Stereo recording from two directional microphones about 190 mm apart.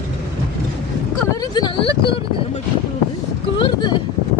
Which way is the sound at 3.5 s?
25° left (ahead or behind).